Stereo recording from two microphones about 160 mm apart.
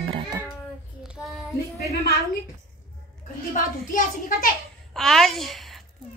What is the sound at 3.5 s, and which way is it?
A child's voice, 55° left (ahead or behind).